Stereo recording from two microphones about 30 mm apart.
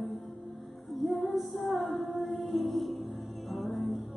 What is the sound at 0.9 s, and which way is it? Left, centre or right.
Female singing, centre.